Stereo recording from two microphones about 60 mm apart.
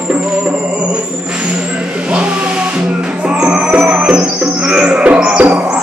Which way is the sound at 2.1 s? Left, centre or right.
Centre.